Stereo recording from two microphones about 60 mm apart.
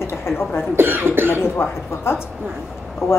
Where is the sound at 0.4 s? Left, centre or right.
Left.